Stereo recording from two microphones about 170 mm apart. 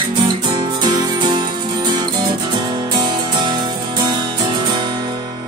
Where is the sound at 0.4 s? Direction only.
25° right (ahead or behind).